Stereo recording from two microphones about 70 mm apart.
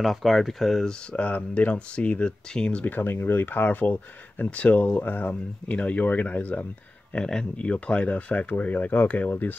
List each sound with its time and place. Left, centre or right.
0.0 s speech: centre
1.1 s speech: centre
2.8 s speech: left
7.2 s speech: centre